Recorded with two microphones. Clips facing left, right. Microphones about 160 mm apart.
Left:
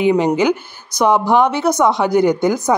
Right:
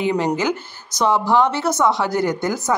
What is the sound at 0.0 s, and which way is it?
Speech, 15° left (ahead or behind).